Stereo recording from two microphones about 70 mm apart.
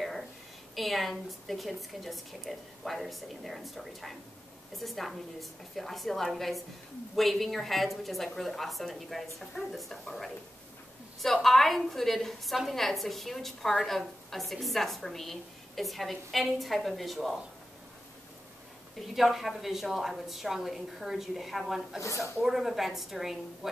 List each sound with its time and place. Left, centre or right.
0.7 s a woman's voice: centre
11.4 s a woman's voice: centre
18.9 s a woman's voice: centre
22.0 s speech: left
22.4 s a woman's voice: centre